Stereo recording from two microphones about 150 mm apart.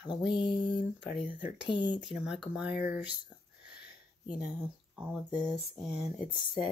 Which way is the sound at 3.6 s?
10° right (ahead or behind).